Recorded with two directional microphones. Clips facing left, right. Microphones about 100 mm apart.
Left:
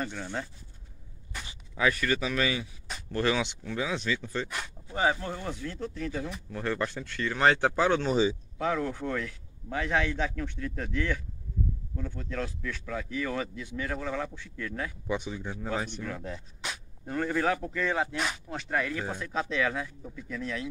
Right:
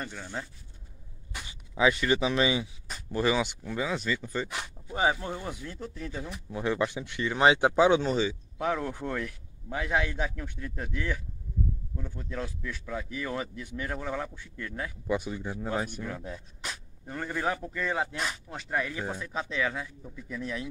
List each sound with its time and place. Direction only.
0.0 s speech: 5° right (ahead or behind)
1.8 s speech: 20° right (ahead or behind)
3.1 s speech: 5° right (ahead or behind)
4.5 s speech: 15° right (ahead or behind)
8.1 s speech: 15° left (ahead or behind)
8.5 s speech: 20° right (ahead or behind)